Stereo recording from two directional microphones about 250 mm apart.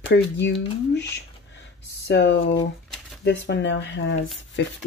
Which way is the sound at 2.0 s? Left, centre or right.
Left.